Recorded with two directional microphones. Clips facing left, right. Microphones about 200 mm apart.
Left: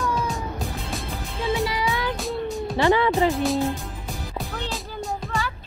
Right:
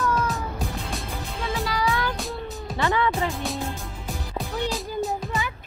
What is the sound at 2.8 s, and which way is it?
Speech, 30° left (ahead or behind).